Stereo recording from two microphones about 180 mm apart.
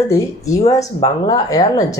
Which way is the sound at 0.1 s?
20° left (ahead or behind).